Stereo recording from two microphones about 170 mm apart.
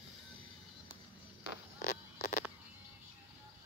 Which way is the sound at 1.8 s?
50° left (ahead or behind).